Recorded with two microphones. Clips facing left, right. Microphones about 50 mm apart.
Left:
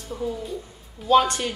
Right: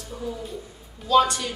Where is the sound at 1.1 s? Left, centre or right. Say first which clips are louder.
Even; left.